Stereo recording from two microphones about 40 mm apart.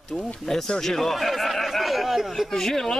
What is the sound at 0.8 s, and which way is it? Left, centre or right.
A man's voice, centre.